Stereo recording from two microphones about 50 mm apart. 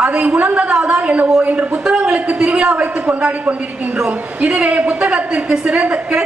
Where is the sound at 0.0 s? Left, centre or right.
Right.